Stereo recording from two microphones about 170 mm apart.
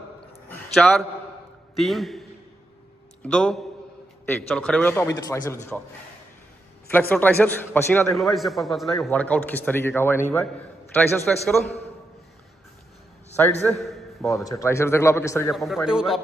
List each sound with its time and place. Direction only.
0.5 s a sound: 5° left (ahead or behind)
1.8 s a man's voice: centre (ahead or behind)
3.3 s a man's voice: 5° left (ahead or behind)
6.9 s a man's voice: 10° left (ahead or behind)
8.2 s a man's voice: centre (ahead or behind)
13.7 s a sound: centre (ahead or behind)
14.3 s a man's voice: 20° left (ahead or behind)
15.5 s a man's voice: centre (ahead or behind)